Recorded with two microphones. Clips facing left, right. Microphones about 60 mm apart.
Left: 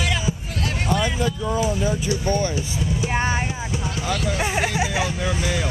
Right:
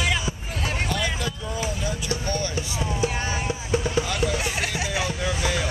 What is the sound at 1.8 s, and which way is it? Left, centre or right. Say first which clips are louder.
Speech: left 5 dB; left.